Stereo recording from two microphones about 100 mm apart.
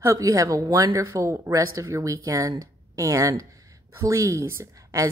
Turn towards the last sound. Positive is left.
turn(degrees=-30)  # may be behind; listen again after turning